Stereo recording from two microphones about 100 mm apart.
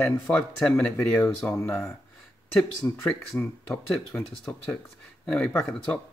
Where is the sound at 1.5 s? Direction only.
25° left (ahead or behind).